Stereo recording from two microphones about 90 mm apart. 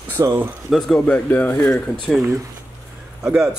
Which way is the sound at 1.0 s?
15° left (ahead or behind).